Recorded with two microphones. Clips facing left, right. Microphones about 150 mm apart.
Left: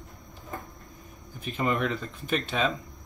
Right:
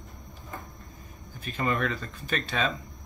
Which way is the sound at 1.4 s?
10° left (ahead or behind).